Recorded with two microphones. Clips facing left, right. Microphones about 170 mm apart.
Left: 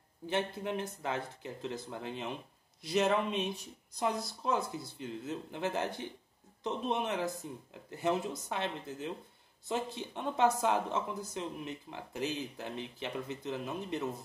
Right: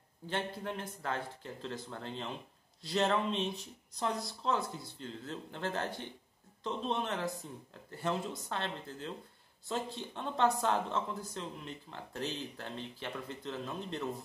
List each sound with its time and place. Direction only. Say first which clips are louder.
0.3 s speech: left 3 dB; 15° left (ahead or behind)